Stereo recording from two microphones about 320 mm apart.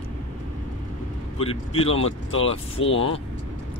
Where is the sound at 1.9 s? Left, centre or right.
Left.